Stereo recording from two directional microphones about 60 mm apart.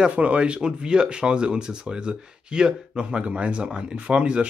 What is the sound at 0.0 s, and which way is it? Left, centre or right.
Speech, right.